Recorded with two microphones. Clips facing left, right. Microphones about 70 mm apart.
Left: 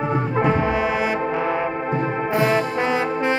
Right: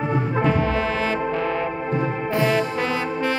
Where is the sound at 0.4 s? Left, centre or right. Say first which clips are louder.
Left 2 dB; left.